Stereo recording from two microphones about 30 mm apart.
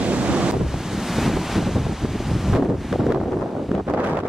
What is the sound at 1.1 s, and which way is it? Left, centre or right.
Wind noise, centre.